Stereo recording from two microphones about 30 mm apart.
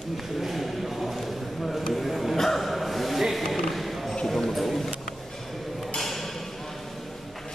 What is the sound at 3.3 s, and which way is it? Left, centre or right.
Speech, centre.